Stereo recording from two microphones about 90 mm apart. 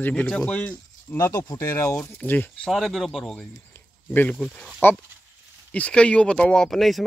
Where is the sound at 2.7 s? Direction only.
Centre (ahead or behind).